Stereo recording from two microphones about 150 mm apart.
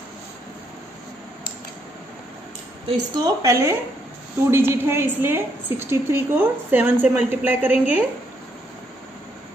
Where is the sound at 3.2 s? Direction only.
20° right (ahead or behind).